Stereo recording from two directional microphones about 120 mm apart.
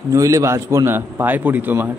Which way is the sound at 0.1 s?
25° right (ahead or behind).